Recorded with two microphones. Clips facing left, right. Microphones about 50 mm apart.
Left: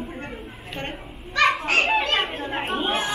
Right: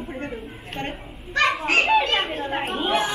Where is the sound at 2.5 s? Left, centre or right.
Centre.